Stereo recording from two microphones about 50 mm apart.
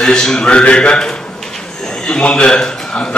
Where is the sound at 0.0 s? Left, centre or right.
Centre.